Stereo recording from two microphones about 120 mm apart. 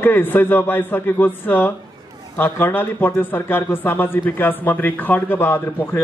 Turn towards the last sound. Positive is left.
turn(degrees=20)  # may be behind; listen again after turning